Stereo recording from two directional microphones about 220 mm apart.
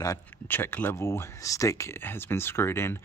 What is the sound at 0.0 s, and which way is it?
Speech, 10° left (ahead or behind).